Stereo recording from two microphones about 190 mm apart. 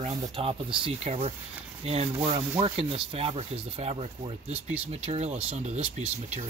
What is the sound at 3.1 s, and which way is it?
Speech, 30° right (ahead or behind).